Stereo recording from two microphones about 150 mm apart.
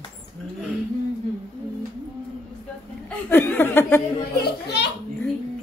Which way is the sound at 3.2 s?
10° left (ahead or behind).